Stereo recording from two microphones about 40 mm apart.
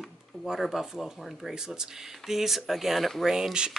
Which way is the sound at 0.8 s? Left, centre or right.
Centre.